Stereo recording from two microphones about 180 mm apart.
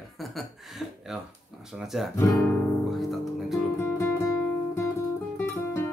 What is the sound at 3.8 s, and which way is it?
Music, 15° left (ahead or behind).